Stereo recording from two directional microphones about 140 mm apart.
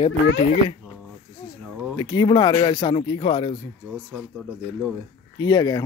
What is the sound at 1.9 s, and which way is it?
Speech, 35° left (ahead or behind).